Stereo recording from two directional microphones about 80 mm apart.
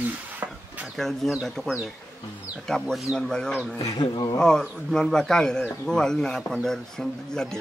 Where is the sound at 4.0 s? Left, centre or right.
Left.